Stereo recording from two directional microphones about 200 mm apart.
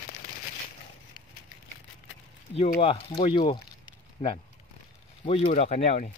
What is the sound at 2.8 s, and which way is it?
Speech, 25° left (ahead or behind).